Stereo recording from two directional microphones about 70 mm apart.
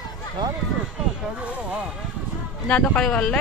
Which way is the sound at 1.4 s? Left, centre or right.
Right.